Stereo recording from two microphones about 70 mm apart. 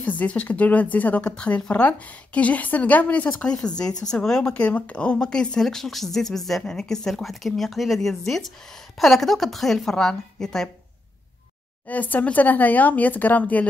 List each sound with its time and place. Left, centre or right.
0.0 s a woman's voice: left
11.9 s a woman's voice: left